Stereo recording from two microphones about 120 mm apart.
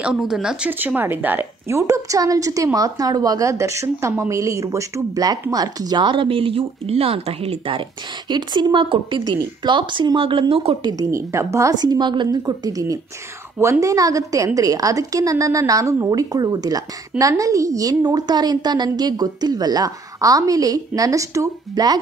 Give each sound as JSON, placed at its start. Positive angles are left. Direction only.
{"t": 0.0, "sound": "a woman's voice", "side_deg": -5}
{"t": 8.3, "sound": "a woman's voice", "side_deg": -35}
{"t": 10.9, "sound": "a woman's voice", "side_deg": -30}